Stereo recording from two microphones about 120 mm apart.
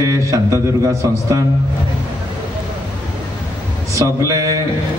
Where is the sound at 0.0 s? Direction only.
25° right (ahead or behind).